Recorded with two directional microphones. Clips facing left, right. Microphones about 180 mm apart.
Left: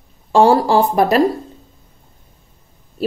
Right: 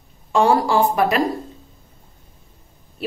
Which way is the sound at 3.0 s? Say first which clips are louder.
Left 6 dB; 35° left (ahead or behind).